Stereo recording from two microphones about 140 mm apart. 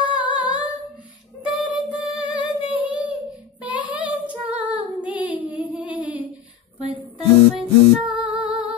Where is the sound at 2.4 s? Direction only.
10° right (ahead or behind).